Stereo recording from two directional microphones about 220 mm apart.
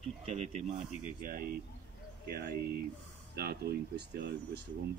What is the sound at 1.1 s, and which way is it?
Speech, 40° right (ahead or behind).